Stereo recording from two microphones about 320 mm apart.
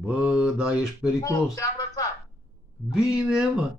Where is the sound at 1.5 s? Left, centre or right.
Centre.